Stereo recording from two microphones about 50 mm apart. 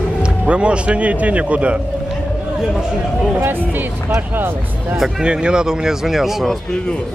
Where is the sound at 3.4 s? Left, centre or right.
Right.